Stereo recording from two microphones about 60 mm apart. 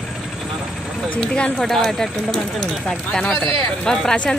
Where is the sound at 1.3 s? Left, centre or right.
Centre.